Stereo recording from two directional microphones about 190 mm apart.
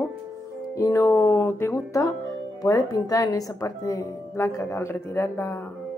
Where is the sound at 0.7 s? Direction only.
15° left (ahead or behind).